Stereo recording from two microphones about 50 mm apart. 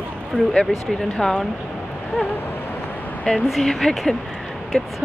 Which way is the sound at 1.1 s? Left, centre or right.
Centre.